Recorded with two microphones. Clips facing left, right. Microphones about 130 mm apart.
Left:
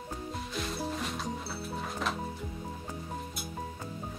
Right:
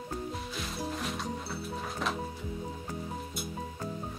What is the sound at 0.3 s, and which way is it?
Music, centre (ahead or behind).